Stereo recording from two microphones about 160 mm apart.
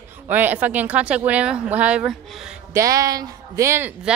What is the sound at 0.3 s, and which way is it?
Speech, 10° right (ahead or behind).